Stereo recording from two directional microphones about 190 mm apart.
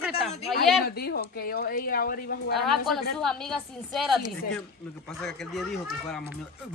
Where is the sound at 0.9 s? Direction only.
55° left (ahead or behind).